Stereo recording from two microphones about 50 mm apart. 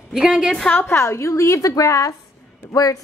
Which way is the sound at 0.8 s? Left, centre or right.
Left.